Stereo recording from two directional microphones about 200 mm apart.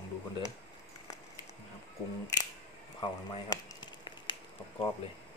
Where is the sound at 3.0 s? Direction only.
20° left (ahead or behind).